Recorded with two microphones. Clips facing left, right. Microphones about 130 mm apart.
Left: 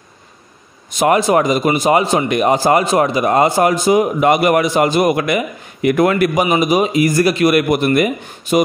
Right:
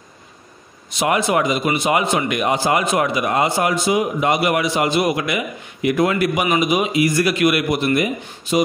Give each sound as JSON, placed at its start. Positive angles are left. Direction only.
{"t": 0.9, "sound": "speech", "side_deg": 40}
{"t": 6.4, "sound": "a man's voice", "side_deg": 35}
{"t": 7.7, "sound": "speech", "side_deg": 55}